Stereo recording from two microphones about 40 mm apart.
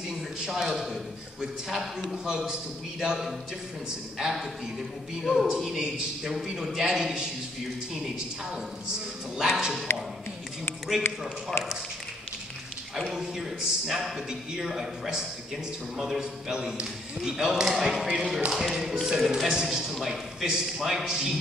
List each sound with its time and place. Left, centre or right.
0.5 s a man's voice: centre
2.2 s a man's voice: centre
5.2 s a man's voice: centre
5.6 s a man's voice: centre
9.4 s a man's voice: centre
12.9 s a man's voice: centre